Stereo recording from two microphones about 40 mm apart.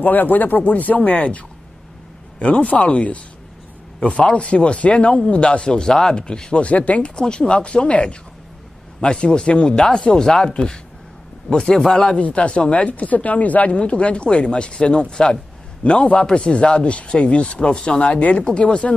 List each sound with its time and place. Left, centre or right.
0.0 s speech: left; by 6.6 s centre
6.6 s speech: left
7.2 s a man's voice: left
12.2 s speech: left
13.7 s speech: left
18.0 s speech: left